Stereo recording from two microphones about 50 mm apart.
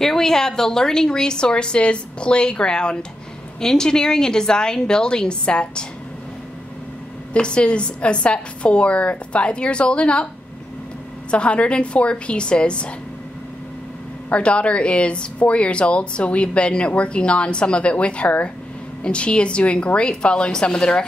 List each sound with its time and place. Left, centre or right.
0.0 s a woman's voice: centre
7.3 s speech: left
11.2 s speech: left
14.3 s speech: left